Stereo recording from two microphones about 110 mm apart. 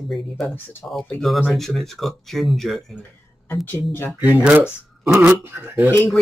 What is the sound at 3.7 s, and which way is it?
Speech, 20° left (ahead or behind).